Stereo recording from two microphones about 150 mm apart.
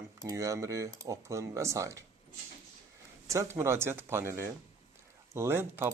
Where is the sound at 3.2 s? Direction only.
20° right (ahead or behind).